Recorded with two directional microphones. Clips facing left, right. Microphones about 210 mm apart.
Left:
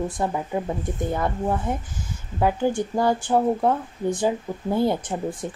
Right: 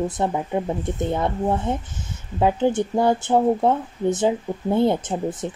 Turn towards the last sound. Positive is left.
turn(degrees=-20)  # may be behind; listen again after turning